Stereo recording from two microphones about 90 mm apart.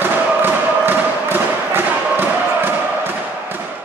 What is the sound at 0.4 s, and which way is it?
Music, 20° right (ahead or behind).